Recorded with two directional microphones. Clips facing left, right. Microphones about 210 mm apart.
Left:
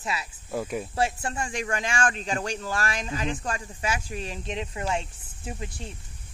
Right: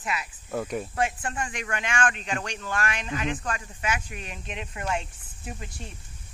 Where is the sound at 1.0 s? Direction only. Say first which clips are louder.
Left 2 dB; 30° left (ahead or behind).